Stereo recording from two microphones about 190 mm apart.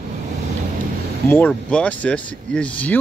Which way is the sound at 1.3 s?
10° left (ahead or behind).